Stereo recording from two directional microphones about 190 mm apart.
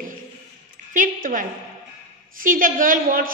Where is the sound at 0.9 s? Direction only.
45° right (ahead or behind).